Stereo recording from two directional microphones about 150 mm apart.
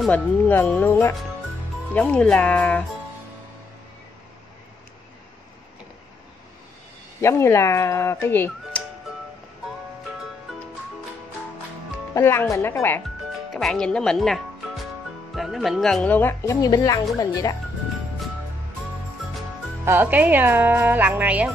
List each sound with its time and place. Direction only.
0.1 s speech: 10° left (ahead or behind)
7.2 s speech: 15° left (ahead or behind)
12.1 s speech: 15° left (ahead or behind)
13.5 s speech: centre (ahead or behind); by 17.6 s 25° left (ahead or behind)
19.8 s speech: 15° right (ahead or behind)